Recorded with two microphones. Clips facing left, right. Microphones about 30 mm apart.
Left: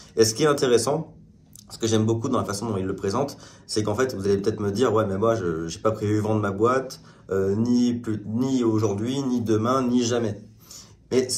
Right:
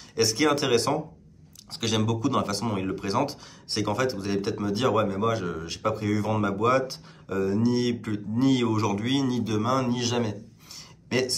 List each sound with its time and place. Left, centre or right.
0.1 s speech: centre
0.7 s speech: right
6.3 s speech: right
8.4 s speech: right
8.8 s speech: right
9.4 s speech: right
10.7 s a sound: right